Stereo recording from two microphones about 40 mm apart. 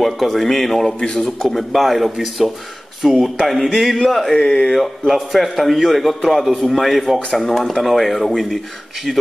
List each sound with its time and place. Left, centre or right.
0.0 s a man's voice: centre
0.9 s speech: left
1.2 s a man's voice: centre
3.4 s a man's voice: centre
4.4 s speech: centre
4.7 s a man's voice: centre